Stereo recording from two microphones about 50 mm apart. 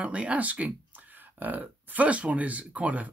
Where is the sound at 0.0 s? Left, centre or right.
Right.